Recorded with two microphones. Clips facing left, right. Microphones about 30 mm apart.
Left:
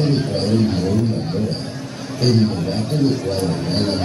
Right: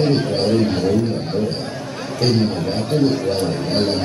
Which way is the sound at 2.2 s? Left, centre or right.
Centre.